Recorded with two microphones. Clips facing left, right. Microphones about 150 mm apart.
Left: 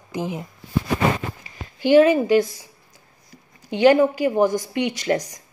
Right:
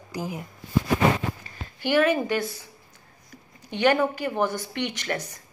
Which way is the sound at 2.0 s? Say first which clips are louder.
Left 6 dB; 15° left (ahead or behind).